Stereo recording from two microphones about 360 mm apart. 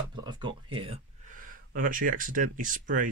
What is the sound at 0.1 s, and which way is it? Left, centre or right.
Speech, centre.